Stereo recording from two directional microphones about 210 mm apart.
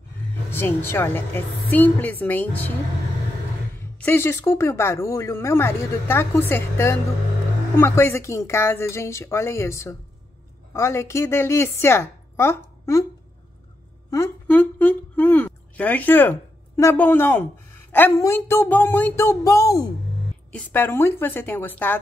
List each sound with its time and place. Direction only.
0.5 s speech: 10° left (ahead or behind)
3.8 s a woman's voice: 10° left (ahead or behind)
14.1 s a woman's voice: 10° left (ahead or behind)